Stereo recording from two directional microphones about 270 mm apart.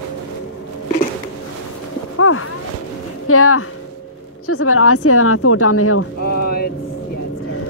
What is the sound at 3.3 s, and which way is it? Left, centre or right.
A woman's voice, left.